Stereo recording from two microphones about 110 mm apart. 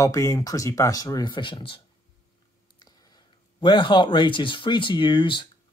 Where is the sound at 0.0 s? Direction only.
30° left (ahead or behind).